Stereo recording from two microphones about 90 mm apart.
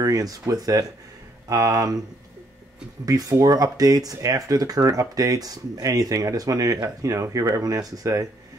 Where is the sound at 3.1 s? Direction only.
40° right (ahead or behind).